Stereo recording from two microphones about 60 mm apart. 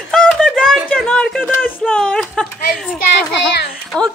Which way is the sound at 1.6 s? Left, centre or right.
Left.